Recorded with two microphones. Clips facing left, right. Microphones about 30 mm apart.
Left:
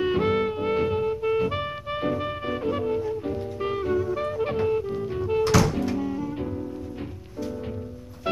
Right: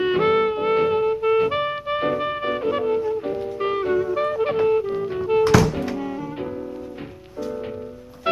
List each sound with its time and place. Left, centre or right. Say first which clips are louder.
0.0 s music: right 5 dB; right